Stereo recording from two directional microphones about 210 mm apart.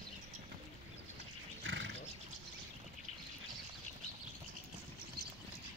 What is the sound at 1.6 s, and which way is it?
Wild animals, 60° right (ahead or behind).